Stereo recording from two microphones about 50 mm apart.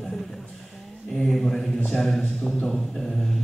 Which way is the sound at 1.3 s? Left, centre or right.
Centre.